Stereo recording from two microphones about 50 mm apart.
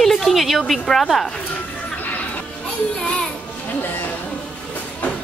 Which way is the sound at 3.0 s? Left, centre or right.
Left.